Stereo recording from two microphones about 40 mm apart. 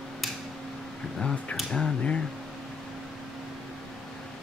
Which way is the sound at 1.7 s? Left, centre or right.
Left.